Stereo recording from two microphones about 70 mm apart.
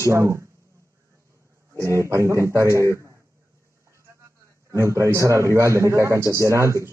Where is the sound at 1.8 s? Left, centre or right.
Right.